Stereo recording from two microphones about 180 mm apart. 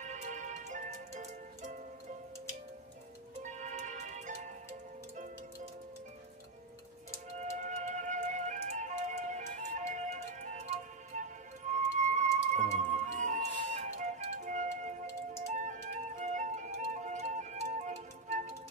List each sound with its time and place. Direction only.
0.0 s music: 40° right (ahead or behind)
3.4 s music: 40° right (ahead or behind)
7.2 s music: 40° right (ahead or behind)